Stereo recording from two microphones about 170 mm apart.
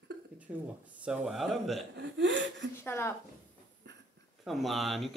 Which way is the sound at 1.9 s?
90° right.